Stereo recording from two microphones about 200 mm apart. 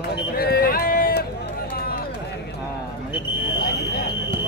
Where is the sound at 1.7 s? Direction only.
50° left (ahead or behind).